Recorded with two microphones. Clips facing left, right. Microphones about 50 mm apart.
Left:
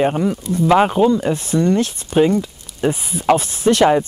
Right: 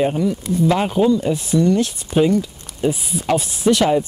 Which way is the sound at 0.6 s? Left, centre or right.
Left.